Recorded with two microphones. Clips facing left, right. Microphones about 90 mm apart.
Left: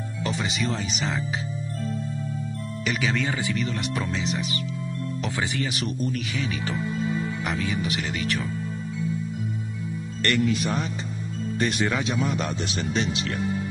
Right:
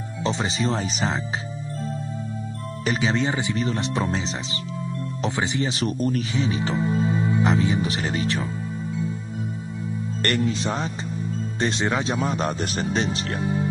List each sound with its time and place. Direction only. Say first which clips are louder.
0.2 s speech: right 3 dB; 30° right (ahead or behind)
2.8 s speech: right 3 dB; 30° right (ahead or behind)
5.9 s speech: right 6 dB; 45° right (ahead or behind)
6.3 s speech: right 5 dB; 25° right (ahead or behind)
10.2 s speech: left 1 dB; 35° right (ahead or behind)